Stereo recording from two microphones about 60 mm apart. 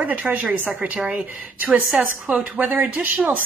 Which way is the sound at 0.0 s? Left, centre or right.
Right.